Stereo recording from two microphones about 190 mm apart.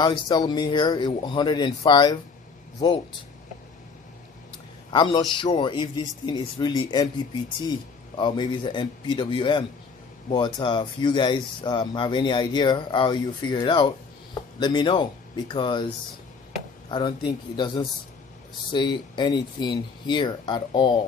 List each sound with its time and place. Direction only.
0.0 s speech: 20° left (ahead or behind)
4.9 s speech: 25° left (ahead or behind)
16.9 s speech: 25° left (ahead or behind)